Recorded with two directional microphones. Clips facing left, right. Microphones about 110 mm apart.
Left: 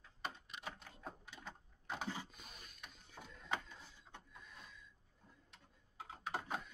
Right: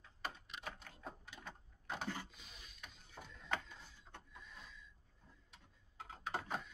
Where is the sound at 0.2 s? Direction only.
Centre (ahead or behind).